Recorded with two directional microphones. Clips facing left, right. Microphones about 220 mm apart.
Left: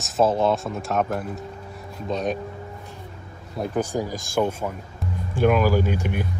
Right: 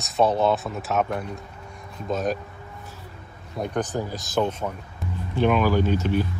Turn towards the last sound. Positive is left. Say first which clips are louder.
# right 2 dB
turn(degrees=15)  # may be behind; listen again after turning